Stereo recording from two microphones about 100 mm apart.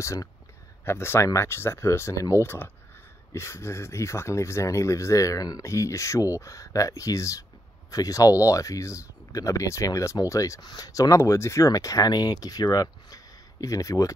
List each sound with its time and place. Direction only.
0.0 s speech: 30° left (ahead or behind)